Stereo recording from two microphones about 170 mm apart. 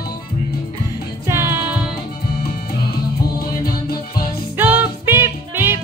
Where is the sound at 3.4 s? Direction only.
65° left (ahead or behind).